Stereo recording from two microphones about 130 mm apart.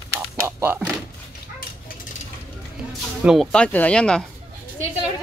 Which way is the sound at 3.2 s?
5° right (ahead or behind).